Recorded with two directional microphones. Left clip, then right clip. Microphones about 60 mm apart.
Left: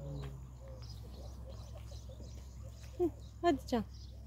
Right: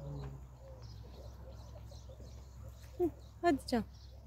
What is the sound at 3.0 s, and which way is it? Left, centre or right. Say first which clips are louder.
Speech: even; centre.